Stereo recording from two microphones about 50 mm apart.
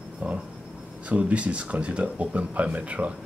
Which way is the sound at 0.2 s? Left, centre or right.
Right.